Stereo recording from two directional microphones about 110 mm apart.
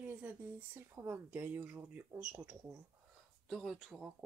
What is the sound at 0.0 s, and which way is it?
Speech, 15° right (ahead or behind).